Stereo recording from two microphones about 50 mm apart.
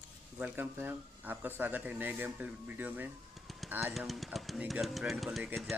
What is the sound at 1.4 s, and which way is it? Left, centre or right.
Speech, right.